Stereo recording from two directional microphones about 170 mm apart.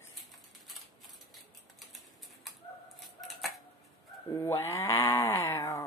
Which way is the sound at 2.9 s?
Centre (ahead or behind).